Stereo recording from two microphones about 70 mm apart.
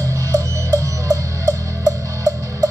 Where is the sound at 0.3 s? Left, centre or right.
Right.